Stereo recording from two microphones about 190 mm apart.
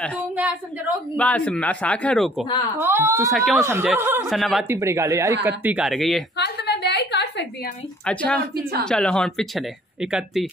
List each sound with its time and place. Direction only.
1.1 s a man's voice: 5° left (ahead or behind)
2.8 s speech: 10° right (ahead or behind)
3.3 s speech: centre (ahead or behind)
3.5 s speech: 15° right (ahead or behind)
4.3 s speech: centre (ahead or behind)
4.6 s speech: 15° right (ahead or behind); by 6.2 s centre (ahead or behind)
6.3 s a sound: 60° left (ahead or behind)
8.0 s a man's voice: 5° left (ahead or behind)